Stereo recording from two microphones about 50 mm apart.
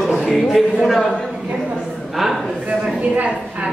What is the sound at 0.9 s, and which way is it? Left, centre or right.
Speech, centre.